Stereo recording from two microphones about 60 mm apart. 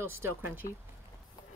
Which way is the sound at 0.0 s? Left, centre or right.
Right.